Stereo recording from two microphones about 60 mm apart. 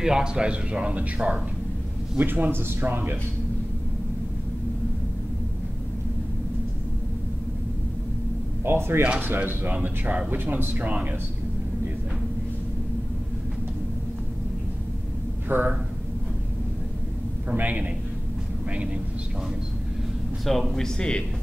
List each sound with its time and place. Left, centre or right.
0.0 s a man's voice: centre; by 3.2 s right
8.6 s a man's voice: right
15.4 s speech: right
17.6 s speech: right
20.4 s speech: centre